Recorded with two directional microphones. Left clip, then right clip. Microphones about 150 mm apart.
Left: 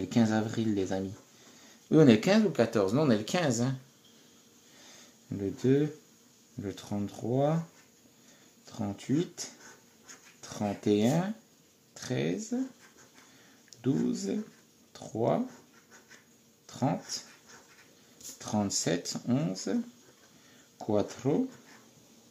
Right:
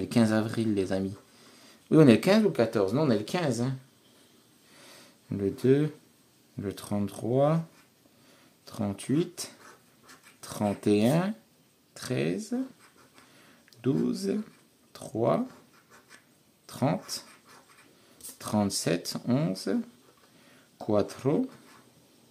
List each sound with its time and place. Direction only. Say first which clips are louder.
0.1 s speech: right 3 dB; 25° right (ahead or behind); by 3.7 s 10° right (ahead or behind)
5.3 s speech: right 3 dB; 35° right (ahead or behind)
8.6 s speech: right 3 dB; 30° right (ahead or behind)
13.7 s speech: right 2 dB; 25° right (ahead or behind)
16.6 s speech: right 3 dB; 30° right (ahead or behind)
18.4 s speech: right 3 dB; 25° right (ahead or behind)
20.8 s speech: right 3 dB; 25° right (ahead or behind)